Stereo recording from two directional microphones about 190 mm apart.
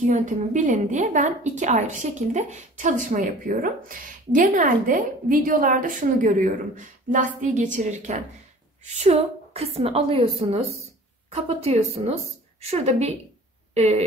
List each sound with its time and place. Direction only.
0.1 s a woman's voice: 40° right (ahead or behind)